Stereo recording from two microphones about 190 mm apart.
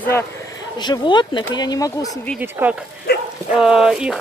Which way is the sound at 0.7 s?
20° left (ahead or behind).